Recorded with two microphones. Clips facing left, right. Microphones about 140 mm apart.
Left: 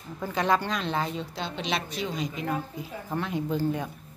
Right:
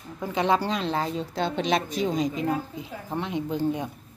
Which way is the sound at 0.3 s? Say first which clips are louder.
Right 2 dB; 25° right (ahead or behind).